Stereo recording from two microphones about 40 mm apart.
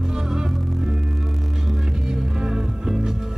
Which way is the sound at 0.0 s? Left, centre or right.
Centre.